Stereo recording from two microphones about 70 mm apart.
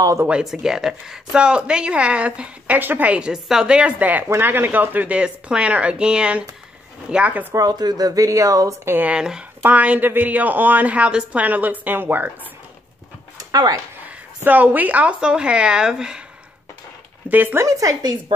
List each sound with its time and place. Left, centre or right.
0.3 s speech: centre
7.5 s speech: right
9.0 s speech: centre
9.6 s speech: right
13.5 s speech: right
14.0 s speech: right
17.3 s speech: right
17.6 s speech: right